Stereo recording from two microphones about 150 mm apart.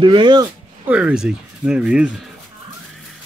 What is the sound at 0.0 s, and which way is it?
Speech, 30° right (ahead or behind).